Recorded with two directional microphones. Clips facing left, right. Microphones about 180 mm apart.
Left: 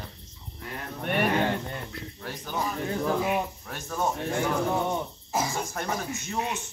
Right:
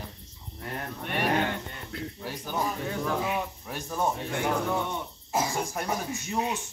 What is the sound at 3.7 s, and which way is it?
Speech, 10° right (ahead or behind).